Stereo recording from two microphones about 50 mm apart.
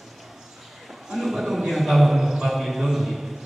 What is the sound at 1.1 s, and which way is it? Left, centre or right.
A man's voice, centre.